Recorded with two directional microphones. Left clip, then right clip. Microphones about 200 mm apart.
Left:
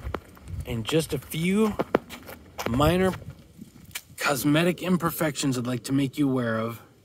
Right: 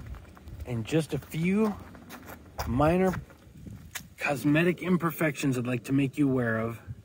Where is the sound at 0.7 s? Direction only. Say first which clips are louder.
Left 4 dB; 15° left (ahead or behind).